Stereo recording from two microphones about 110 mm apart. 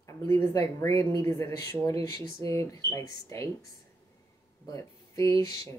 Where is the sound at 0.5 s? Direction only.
25° left (ahead or behind).